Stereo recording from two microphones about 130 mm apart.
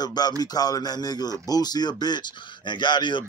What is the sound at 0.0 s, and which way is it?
A man's voice, 30° left (ahead or behind).